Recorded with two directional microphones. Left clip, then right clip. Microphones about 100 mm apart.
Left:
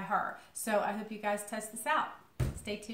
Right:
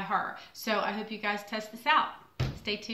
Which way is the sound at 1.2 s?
40° left (ahead or behind).